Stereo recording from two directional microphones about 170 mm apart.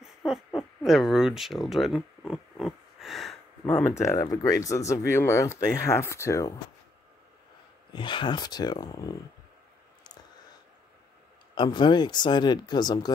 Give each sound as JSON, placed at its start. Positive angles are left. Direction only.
{"t": 0.0, "sound": "a sound", "side_deg": 0}
{"t": 3.6, "sound": "speech", "side_deg": 15}
{"t": 7.9, "sound": "speech", "side_deg": 30}
{"t": 11.5, "sound": "speech", "side_deg": 25}